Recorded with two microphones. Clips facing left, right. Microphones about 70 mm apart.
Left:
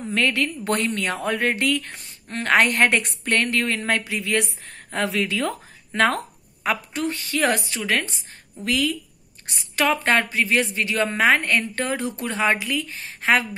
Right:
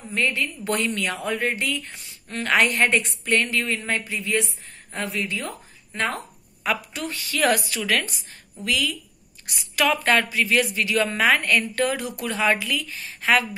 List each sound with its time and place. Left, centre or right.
0.1 s a woman's voice: left
0.7 s a woman's voice: left
2.2 s a woman's voice: left
4.6 s speech: left
6.6 s a woman's voice: left
8.6 s a woman's voice: left